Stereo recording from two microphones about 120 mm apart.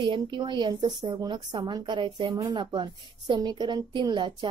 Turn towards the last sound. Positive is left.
turn(degrees=-40)  # may be behind; listen again after turning